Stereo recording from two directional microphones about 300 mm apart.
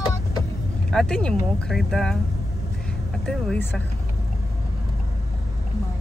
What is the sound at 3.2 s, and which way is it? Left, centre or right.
Speech, centre.